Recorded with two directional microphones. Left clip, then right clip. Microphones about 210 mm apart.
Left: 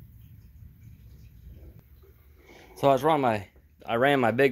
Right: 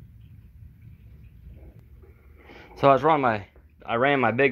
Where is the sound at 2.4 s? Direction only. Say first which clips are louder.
Right 4 dB; 10° left (ahead or behind).